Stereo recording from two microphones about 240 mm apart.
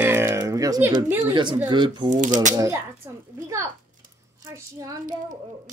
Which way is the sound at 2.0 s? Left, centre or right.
Right.